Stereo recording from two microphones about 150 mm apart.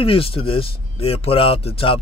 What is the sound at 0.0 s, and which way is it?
Speech, 40° left (ahead or behind).